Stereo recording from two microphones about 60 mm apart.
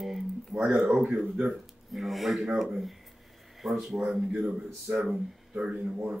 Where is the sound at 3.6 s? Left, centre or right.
Centre.